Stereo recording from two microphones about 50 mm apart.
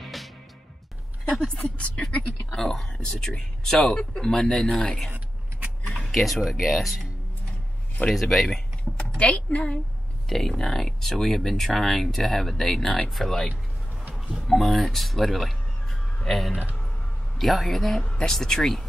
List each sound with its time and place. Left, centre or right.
0.0 s music: centre
1.3 s speech: centre
1.6 s speech: left
2.5 s speech: centre
5.9 s speech: centre
8.1 s speech: centre
8.9 s a woman's voice: left
10.3 s speech: centre